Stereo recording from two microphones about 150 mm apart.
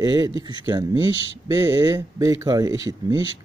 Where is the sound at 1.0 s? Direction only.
40° left (ahead or behind).